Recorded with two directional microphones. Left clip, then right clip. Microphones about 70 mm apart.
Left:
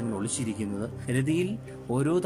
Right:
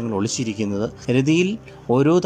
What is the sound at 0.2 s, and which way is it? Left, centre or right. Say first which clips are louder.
Speech: right 9 dB; right.